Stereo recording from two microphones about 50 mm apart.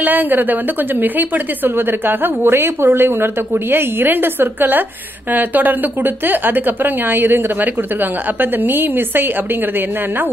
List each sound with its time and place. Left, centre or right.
0.0 s a woman's voice: right